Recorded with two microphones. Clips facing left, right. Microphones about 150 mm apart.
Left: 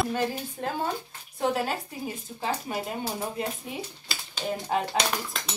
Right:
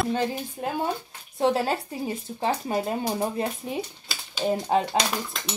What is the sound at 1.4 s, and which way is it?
Speech, 30° right (ahead or behind).